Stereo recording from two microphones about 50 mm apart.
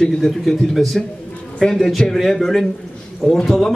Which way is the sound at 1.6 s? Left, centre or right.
Centre.